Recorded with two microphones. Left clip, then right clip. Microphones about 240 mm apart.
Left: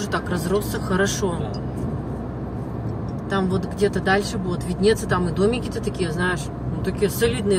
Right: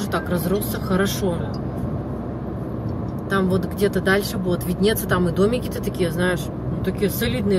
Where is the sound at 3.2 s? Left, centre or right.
Centre.